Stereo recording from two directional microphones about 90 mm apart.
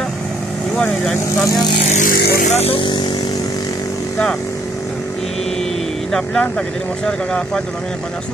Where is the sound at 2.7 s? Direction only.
65° left (ahead or behind); by 3.8 s 45° left (ahead or behind).